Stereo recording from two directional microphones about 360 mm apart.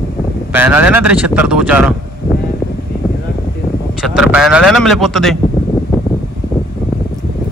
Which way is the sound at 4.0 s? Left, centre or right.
Centre.